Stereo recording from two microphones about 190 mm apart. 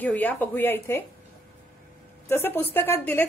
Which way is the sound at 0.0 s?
10° left (ahead or behind).